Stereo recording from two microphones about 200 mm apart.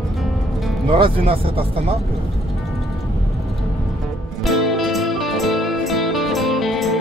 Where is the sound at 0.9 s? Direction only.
25° right (ahead or behind).